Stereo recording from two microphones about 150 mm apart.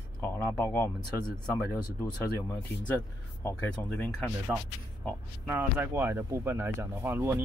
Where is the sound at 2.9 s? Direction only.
15° left (ahead or behind).